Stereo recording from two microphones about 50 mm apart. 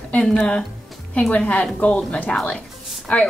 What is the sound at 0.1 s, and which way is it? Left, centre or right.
A woman's voice, left.